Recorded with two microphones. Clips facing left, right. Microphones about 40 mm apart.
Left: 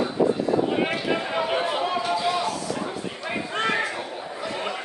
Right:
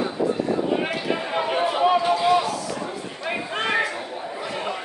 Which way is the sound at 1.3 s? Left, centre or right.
Centre.